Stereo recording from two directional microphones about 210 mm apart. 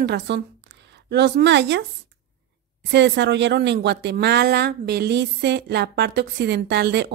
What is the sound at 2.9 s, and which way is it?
Speech, 55° right (ahead or behind).